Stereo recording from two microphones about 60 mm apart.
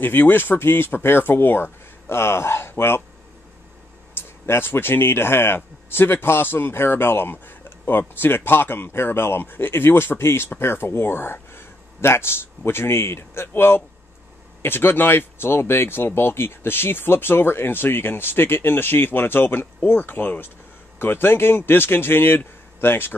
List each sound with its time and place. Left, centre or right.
0.0 s speech: left
4.5 s speech: left